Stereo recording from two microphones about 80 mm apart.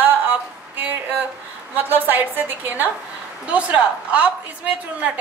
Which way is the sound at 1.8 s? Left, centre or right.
Right.